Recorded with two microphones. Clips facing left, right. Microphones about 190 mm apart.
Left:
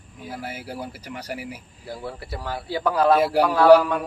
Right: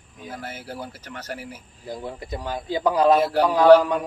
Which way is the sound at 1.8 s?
15° right (ahead or behind).